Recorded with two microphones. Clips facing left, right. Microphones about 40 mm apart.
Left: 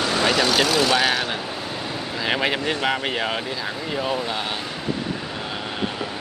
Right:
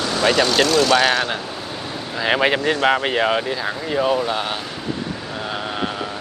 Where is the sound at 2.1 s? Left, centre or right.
Centre.